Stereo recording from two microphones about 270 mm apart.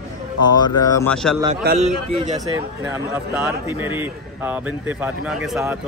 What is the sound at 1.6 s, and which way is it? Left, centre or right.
Speech, right.